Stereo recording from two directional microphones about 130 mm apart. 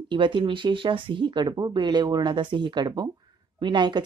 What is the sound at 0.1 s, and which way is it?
Speech, 40° right (ahead or behind).